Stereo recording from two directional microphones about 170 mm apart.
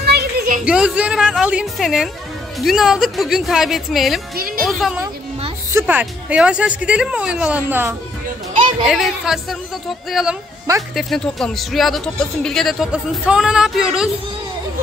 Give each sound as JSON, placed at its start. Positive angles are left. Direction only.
{"t": 0.0, "sound": "a sound", "side_deg": -70}
{"t": 0.7, "sound": "speech", "side_deg": -5}
{"t": 5.7, "sound": "a woman's voice", "side_deg": -15}
{"t": 11.0, "sound": "speech", "side_deg": 0}